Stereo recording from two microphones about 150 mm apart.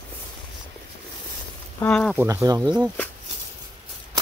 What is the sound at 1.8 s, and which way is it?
Speech, 10° left (ahead or behind).